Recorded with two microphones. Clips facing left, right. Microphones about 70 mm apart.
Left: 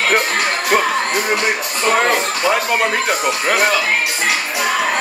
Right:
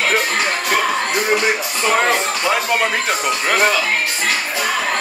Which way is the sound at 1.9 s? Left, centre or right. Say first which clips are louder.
Left 1 dB; centre.